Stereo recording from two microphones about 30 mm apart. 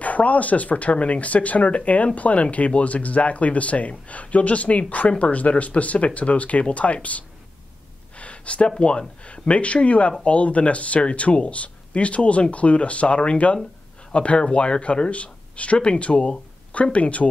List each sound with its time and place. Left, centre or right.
0.0 s speech: left